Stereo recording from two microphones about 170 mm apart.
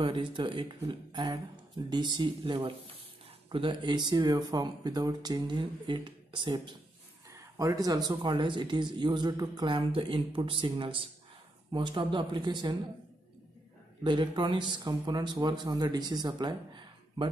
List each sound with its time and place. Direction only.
0.0 s speech: 30° right (ahead or behind)
14.0 s speech: 30° right (ahead or behind)